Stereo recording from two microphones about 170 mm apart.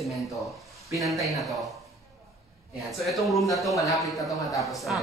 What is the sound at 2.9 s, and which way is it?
Speech, centre (ahead or behind).